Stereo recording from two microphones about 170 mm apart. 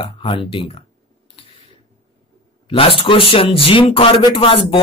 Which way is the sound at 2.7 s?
35° left (ahead or behind).